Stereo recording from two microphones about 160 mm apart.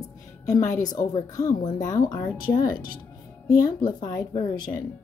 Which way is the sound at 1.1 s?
25° left (ahead or behind).